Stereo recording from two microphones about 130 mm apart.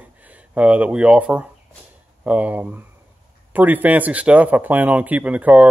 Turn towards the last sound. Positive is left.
turn(degrees=-10)  # may be behind; listen again after turning